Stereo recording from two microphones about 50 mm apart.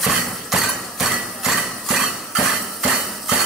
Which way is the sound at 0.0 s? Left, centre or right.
Centre.